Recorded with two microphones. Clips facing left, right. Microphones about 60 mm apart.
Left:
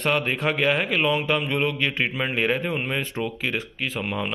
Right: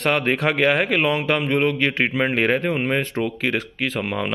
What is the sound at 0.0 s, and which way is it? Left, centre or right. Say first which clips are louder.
Speech: right 3 dB; right.